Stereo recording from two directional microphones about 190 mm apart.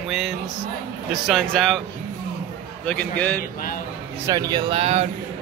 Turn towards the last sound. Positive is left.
turn(degrees=-35)  # may be behind; listen again after turning